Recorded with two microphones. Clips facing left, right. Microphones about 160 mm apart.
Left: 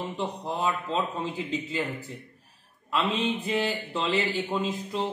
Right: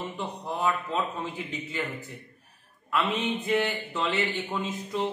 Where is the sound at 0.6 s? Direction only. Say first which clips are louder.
Even; 25° left (ahead or behind).